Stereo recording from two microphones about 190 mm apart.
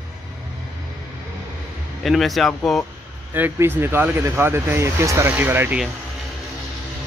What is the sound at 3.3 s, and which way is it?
Speech, 10° right (ahead or behind).